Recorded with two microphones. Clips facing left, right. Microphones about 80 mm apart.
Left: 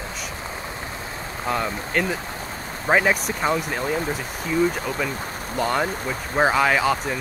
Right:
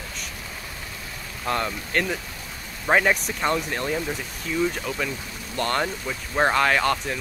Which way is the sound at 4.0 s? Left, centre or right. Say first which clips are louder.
Left 3 dB; left.